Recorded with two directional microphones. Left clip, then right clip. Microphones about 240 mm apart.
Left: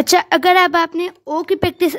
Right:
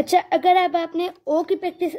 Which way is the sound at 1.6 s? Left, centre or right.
Left.